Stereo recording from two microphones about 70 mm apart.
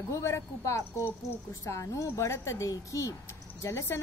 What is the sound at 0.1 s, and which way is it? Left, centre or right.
A woman's voice, left.